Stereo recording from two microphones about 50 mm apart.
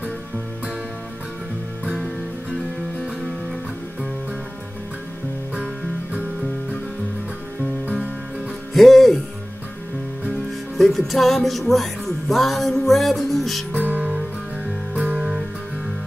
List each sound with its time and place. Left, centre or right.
8.7 s music: centre
10.8 s music: centre
13.7 s music: right